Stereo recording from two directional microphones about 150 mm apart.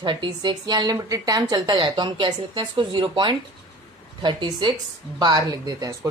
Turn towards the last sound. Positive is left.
turn(degrees=-25)  # may be behind; listen again after turning